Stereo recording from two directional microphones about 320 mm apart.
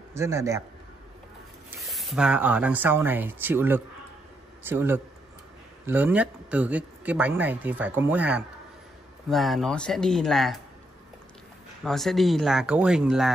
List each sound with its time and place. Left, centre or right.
0.1 s a man's voice: centre
1.7 s a man's voice: centre
11.8 s speech: centre